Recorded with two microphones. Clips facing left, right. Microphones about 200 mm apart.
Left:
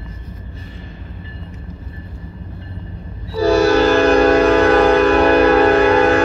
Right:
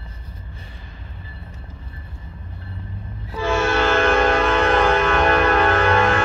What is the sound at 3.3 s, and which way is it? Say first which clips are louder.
Music: left 8 dB; 40° left (ahead or behind).